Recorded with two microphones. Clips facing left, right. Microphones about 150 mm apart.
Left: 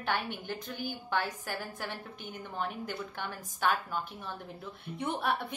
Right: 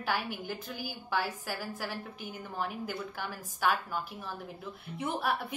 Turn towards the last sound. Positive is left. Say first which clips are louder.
# even
turn(degrees=-5)  # may be behind; listen again after turning